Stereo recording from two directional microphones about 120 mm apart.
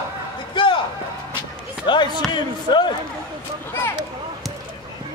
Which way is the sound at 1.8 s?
40° left (ahead or behind).